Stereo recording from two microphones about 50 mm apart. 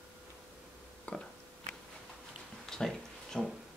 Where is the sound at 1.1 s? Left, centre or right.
Left.